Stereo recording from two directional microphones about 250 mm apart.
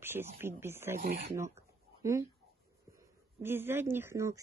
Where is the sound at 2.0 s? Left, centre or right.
Centre.